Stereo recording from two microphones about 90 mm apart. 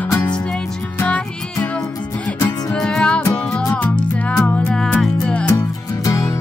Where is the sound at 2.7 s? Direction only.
10° left (ahead or behind).